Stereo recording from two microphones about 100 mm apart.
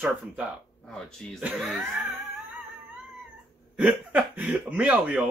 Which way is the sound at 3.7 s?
15° right (ahead or behind).